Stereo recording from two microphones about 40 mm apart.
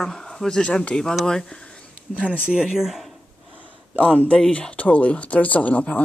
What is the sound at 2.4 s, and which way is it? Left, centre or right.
Speech, right.